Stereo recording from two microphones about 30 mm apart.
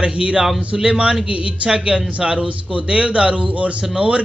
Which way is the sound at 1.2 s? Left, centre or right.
Right.